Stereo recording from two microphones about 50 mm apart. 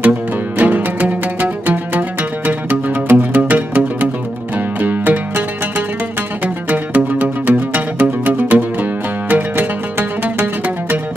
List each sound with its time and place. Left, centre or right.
0.6 s music: right
9.3 s zither: right